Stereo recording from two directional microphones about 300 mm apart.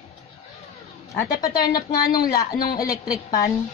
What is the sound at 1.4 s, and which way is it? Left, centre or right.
Speech, centre.